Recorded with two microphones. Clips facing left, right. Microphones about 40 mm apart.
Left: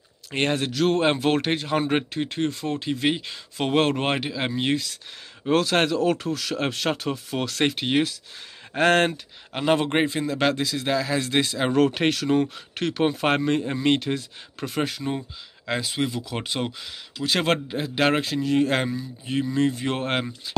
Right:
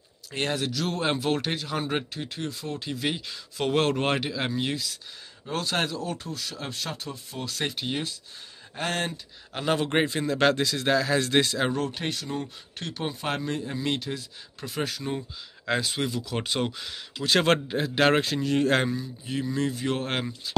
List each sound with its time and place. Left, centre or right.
0.3 s speech: left
2.8 s speech: left
5.4 s speech: left
5.9 s speech: left
9.5 s speech: left
9.9 s speech: centre
11.7 s speech: left
13.2 s speech: left
14.8 s speech: left
15.6 s speech: centre
19.5 s speech: left